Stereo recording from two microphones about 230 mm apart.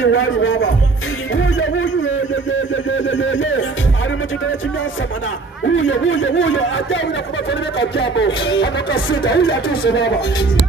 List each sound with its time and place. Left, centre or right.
0.0 s speech: left
1.3 s music: left
2.9 s speech: left
5.7 s speech: left